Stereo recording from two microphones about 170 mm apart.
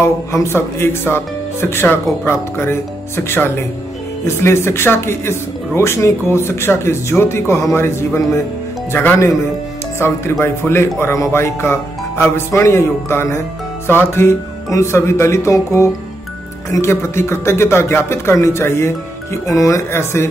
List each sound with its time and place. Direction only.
0.0 s speech: 15° left (ahead or behind)